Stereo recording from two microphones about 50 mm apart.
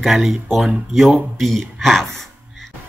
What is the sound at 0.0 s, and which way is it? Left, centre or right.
Speech, centre.